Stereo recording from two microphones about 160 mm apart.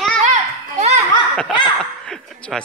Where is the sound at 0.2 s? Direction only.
45° right (ahead or behind).